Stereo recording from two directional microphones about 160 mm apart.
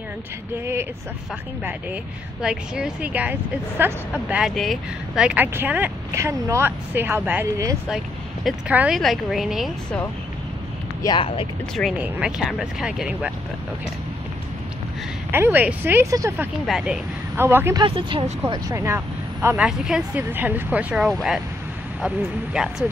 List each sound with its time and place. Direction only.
1.6 s speech: 10° right (ahead or behind)
11.0 s speech: 25° left (ahead or behind)
12.0 s speech: 5° right (ahead or behind)
15.3 s speech: 15° right (ahead or behind)
16.6 s speech: 5° right (ahead or behind)
17.4 s speech: 15° right (ahead or behind)
17.7 s speech: 35° right (ahead or behind)
18.5 s speech: 20° right (ahead or behind)